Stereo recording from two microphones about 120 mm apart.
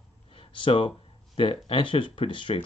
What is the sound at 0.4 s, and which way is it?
Speech, 45° left (ahead or behind).